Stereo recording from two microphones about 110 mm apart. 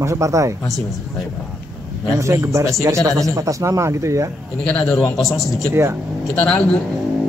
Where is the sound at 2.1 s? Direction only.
25° right (ahead or behind).